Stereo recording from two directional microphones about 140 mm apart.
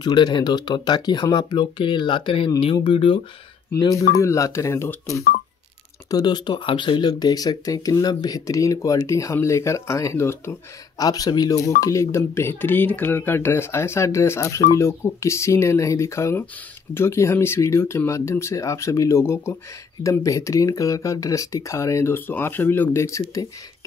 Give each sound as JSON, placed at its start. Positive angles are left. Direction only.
{"t": 0.0, "sound": "speech", "side_deg": 30}
{"t": 3.7, "sound": "speech", "side_deg": 25}